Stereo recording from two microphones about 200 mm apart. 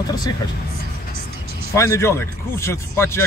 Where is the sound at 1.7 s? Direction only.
15° left (ahead or behind).